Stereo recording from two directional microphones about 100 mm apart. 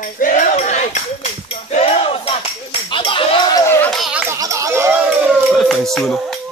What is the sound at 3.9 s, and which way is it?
Laughter, centre (ahead or behind).